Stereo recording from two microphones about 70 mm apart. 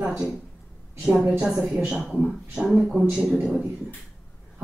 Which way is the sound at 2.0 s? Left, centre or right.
Centre.